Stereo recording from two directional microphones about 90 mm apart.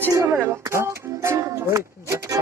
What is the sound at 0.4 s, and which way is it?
Speech, 30° right (ahead or behind).